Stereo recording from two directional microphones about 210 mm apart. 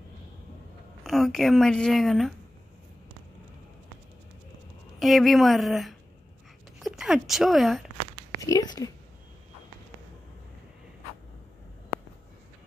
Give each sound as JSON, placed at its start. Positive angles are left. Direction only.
{"t": 1.0, "sound": "a woman's voice", "side_deg": 0}
{"t": 4.9, "sound": "a woman's voice", "side_deg": 0}
{"t": 8.4, "sound": "speech", "side_deg": 15}